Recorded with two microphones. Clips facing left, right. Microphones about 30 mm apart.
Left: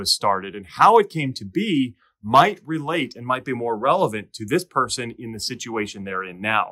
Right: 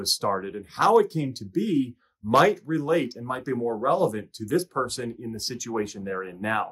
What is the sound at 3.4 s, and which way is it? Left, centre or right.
Speech, left.